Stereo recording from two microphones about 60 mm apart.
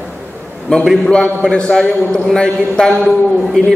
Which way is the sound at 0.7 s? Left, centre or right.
Centre.